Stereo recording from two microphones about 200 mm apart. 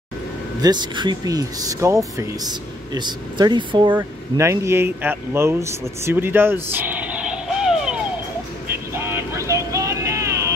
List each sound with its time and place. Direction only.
0.6 s speech: 20° right (ahead or behind); by 8.0 s 5° right (ahead or behind)
8.9 s vehicle: 10° right (ahead or behind)